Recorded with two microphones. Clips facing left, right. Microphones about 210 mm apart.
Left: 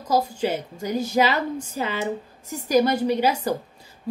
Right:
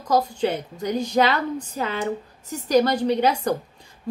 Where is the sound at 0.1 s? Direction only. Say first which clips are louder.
Right 1 dB; 10° left (ahead or behind).